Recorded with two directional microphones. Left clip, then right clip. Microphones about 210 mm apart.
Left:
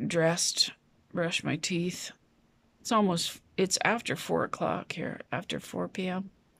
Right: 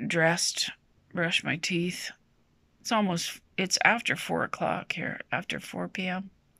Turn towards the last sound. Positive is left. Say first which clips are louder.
# right 1 dB
turn(degrees=15)  # may be behind; listen again after turning